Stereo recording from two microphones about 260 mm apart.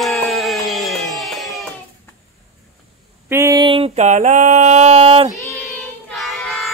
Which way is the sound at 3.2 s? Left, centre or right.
Centre.